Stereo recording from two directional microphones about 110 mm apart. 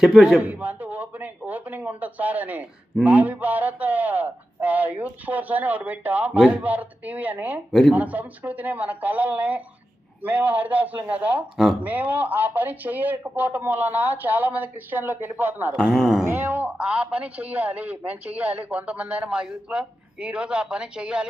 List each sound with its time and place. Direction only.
0.0 s a man's voice: 5° right (ahead or behind)
15.8 s a man's voice: centre (ahead or behind)
16.3 s a man's voice: 15° right (ahead or behind)